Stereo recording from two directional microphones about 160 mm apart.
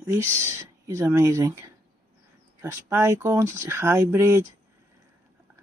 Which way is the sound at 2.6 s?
15° right (ahead or behind).